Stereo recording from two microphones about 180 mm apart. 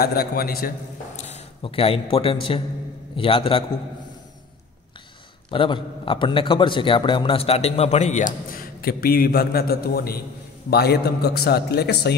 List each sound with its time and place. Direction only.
0.0 s a man's voice: 60° left (ahead or behind)
1.2 s a man's voice: 35° left (ahead or behind)
5.5 s a man's voice: 30° left (ahead or behind); by 12.2 s 65° left (ahead or behind)